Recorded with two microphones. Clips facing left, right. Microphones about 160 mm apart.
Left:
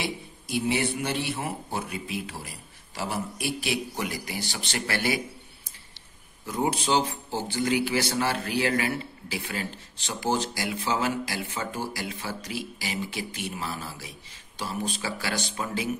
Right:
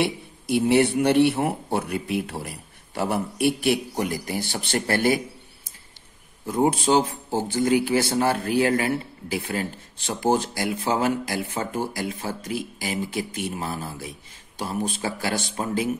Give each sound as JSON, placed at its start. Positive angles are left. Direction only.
{"t": 0.0, "sound": "a man's voice", "side_deg": -65}
{"t": 6.4, "sound": "speech", "side_deg": -50}